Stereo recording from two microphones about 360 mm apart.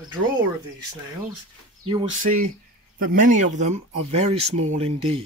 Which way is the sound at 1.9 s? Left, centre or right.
Centre.